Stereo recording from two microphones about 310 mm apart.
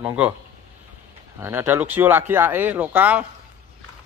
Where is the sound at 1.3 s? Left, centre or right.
Centre.